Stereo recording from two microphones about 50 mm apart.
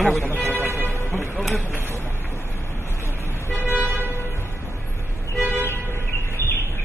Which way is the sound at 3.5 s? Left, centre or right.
Right.